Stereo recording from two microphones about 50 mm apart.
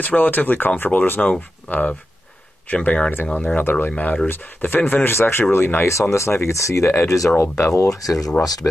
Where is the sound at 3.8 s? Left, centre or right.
Left.